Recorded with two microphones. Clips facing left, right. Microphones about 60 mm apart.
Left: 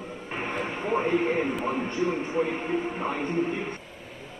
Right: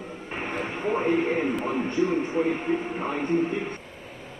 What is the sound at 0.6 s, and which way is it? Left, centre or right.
Radio, left.